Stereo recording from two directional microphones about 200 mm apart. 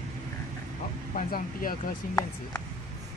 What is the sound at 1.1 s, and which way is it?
Speech, 40° left (ahead or behind).